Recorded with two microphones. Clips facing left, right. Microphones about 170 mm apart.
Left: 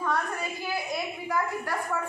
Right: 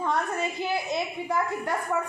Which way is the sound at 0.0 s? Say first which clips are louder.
Right 2 dB; 25° right (ahead or behind).